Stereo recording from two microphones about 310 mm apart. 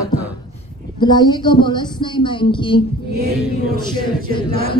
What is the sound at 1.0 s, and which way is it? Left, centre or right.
A woman's voice, centre.